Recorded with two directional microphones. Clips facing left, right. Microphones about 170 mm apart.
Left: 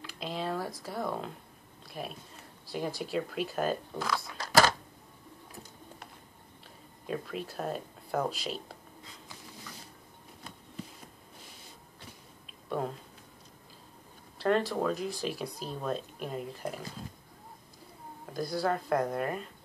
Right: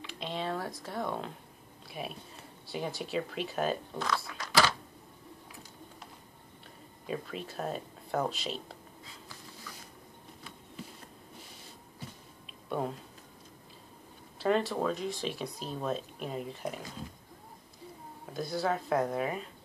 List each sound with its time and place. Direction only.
0.0 s a sound: centre (ahead or behind)
1.9 s speech: centre (ahead or behind)
4.4 s typing: 45° left (ahead or behind)
7.1 s speech: centre (ahead or behind)
12.6 s a sound: centre (ahead or behind)
14.4 s speech: centre (ahead or behind)
18.2 s speech: centre (ahead or behind)